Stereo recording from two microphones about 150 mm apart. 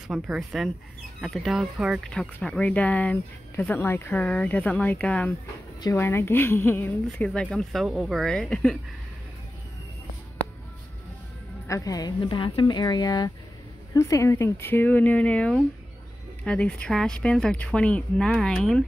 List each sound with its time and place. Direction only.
0.1 s speech: 5° right (ahead or behind)
5.8 s speech: 20° left (ahead or behind); by 8.7 s 5° left (ahead or behind)
11.6 s a woman's voice: 20° left (ahead or behind); by 18.9 s 5° left (ahead or behind)